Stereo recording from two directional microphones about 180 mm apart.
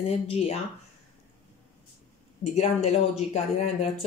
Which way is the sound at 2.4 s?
35° left (ahead or behind).